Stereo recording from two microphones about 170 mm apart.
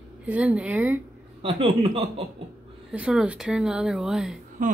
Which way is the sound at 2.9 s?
5° right (ahead or behind).